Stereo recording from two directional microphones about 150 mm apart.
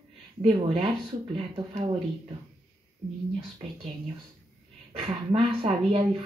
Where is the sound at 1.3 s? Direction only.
35° right (ahead or behind).